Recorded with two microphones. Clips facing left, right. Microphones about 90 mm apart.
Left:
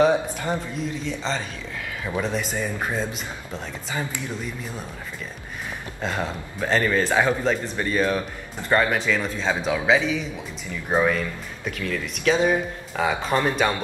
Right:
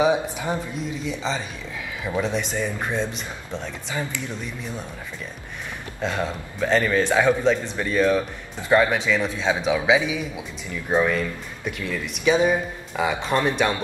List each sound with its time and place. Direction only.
0.0 s speech: 5° right (ahead or behind)
6.0 s speech: centre (ahead or behind)
10.9 s speech: 5° left (ahead or behind)